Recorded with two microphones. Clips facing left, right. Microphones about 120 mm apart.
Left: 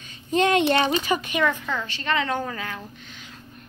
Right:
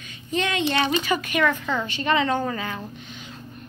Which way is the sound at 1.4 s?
Centre (ahead or behind).